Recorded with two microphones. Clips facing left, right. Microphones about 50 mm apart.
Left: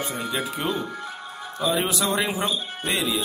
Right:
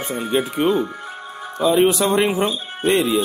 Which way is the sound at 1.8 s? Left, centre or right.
Right.